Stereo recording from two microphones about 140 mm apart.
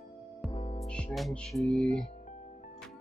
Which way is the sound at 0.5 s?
45° left (ahead or behind).